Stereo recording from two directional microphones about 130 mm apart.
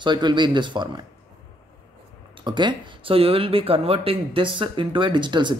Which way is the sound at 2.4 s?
35° right (ahead or behind).